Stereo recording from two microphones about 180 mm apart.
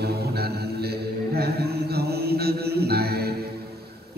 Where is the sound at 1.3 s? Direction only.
60° right (ahead or behind).